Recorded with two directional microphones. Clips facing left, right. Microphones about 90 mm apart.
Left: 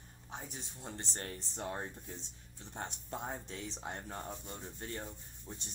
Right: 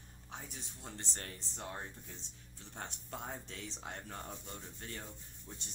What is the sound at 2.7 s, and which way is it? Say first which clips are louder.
Speech: left 3 dB; 30° left (ahead or behind).